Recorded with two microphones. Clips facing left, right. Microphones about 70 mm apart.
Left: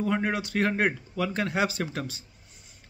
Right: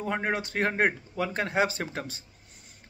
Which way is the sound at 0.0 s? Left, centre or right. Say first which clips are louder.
Left 2 dB; right.